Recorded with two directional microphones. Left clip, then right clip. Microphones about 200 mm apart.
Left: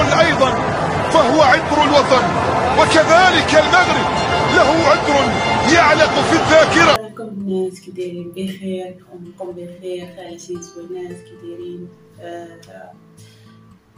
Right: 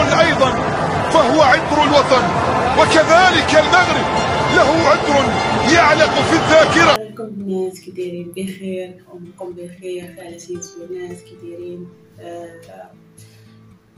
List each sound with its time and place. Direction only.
0.0 s speech: centre (ahead or behind)